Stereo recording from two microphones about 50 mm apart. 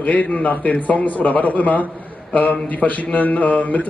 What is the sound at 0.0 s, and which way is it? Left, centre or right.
A man's voice, left.